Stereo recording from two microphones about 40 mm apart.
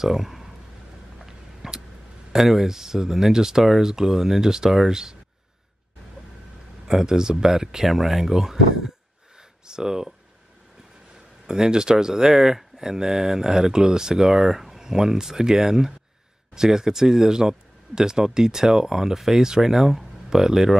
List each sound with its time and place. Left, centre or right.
0.0 s speech: centre
1.2 s tick-tock: centre
2.3 s speech: centre
6.9 s speech: centre
11.4 s speech: centre